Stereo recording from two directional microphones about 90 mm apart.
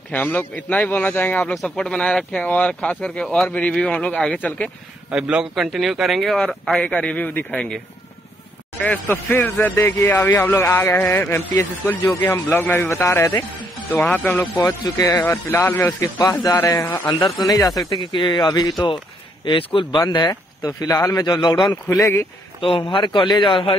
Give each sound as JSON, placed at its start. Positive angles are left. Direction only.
{"t": 0.1, "sound": "speech", "side_deg": 20}
{"t": 1.5, "sound": "speech", "side_deg": 5}
{"t": 5.1, "sound": "a man's voice", "side_deg": -10}
{"t": 6.9, "sound": "speech", "side_deg": 15}
{"t": 8.8, "sound": "speech", "side_deg": 15}
{"t": 14.6, "sound": "a man's voice", "side_deg": 35}
{"t": 15.2, "sound": "speech", "side_deg": 25}
{"t": 16.6, "sound": "a man's voice", "side_deg": 40}
{"t": 18.1, "sound": "speech", "side_deg": 60}
{"t": 18.5, "sound": "speech", "side_deg": 45}
{"t": 19.4, "sound": "speech", "side_deg": 70}
{"t": 20.0, "sound": "speech", "side_deg": 50}
{"t": 21.3, "sound": "speech", "side_deg": 55}
{"t": 22.6, "sound": "speech", "side_deg": 75}